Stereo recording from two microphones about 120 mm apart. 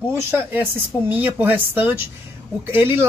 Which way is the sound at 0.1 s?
15° right (ahead or behind).